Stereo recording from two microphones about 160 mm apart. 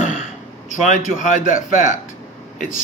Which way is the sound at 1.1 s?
55° left (ahead or behind).